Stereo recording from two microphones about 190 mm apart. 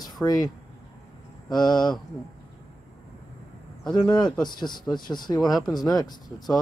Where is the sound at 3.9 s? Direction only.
20° left (ahead or behind).